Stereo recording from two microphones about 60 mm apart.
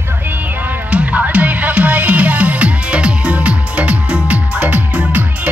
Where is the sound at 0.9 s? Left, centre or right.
Right.